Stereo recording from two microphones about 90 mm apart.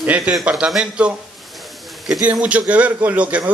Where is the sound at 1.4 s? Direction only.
Centre (ahead or behind).